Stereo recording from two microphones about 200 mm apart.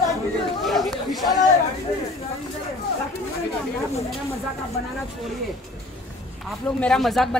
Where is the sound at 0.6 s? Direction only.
Centre (ahead or behind).